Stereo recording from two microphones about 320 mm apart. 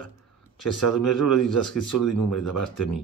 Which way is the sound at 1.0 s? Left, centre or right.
Left.